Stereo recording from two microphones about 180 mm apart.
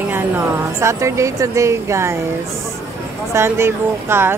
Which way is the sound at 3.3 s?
15° right (ahead or behind).